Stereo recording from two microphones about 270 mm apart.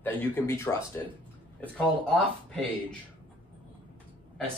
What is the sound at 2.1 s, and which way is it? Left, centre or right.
Speech, centre.